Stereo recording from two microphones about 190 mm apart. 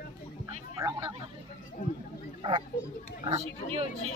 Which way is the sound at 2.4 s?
25° right (ahead or behind).